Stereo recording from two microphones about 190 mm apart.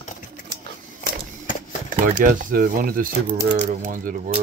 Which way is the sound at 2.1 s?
45° right (ahead or behind).